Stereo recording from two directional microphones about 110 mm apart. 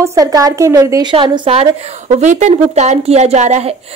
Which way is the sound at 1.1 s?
55° right (ahead or behind).